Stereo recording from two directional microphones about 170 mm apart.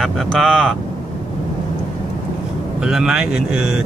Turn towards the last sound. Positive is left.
turn(degrees=-5)  # may be behind; listen again after turning